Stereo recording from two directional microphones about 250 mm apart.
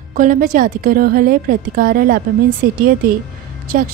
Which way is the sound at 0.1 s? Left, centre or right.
Right.